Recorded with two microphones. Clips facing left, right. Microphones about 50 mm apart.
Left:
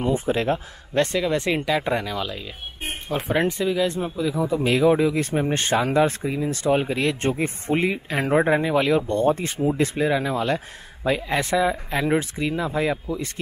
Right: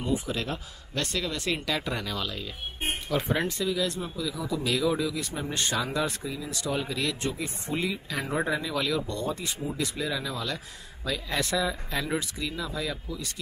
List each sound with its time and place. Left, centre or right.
0.0 s a man's voice: left